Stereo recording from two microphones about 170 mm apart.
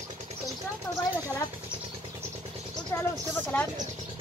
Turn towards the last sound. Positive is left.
turn(degrees=10)  # may be behind; listen again after turning